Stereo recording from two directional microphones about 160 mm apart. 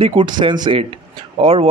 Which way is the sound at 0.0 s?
30° right (ahead or behind).